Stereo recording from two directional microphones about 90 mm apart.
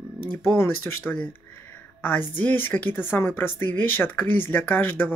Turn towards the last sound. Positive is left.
turn(degrees=25)  # may be behind; listen again after turning